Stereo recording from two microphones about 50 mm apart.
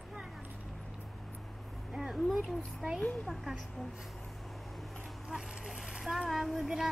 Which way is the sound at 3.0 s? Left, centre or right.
Left.